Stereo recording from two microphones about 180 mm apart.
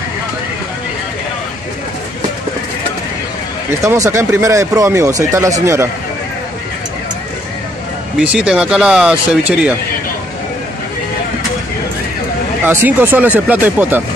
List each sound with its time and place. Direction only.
3.8 s speech: 15° right (ahead or behind)
8.2 s speech: 5° right (ahead or behind)
12.6 s speech: 10° right (ahead or behind)